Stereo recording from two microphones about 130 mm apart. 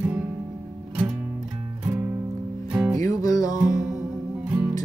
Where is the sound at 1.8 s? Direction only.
15° right (ahead or behind).